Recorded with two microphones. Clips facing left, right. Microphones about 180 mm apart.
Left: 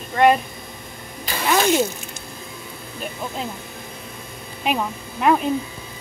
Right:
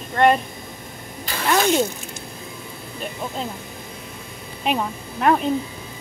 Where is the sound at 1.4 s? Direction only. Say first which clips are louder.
Even; 5° left (ahead or behind).